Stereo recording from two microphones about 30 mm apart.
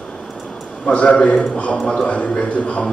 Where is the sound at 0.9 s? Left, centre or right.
Left.